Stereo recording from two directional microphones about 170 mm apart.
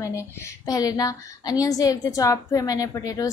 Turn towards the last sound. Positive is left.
turn(degrees=20)  # may be behind; listen again after turning